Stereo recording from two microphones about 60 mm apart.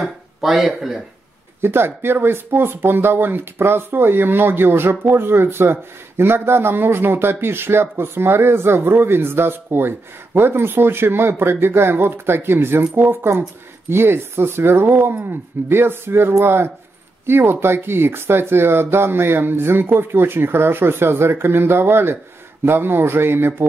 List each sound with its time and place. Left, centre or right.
0.0 s speech: centre
1.6 s speech: right